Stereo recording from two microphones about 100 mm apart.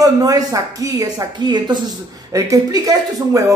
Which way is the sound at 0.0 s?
35° right (ahead or behind).